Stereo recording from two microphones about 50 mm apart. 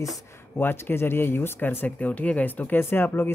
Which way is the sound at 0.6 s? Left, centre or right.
Left.